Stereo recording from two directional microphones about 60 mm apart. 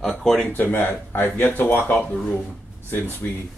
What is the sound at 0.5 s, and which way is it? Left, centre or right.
Speech, left.